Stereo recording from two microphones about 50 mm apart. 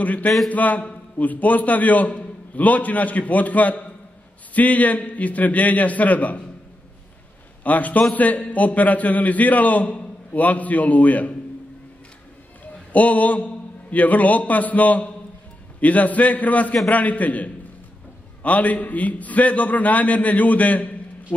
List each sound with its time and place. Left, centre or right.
0.0 s a man's voice: left
7.6 s a man's voice: left
12.9 s a man's voice: left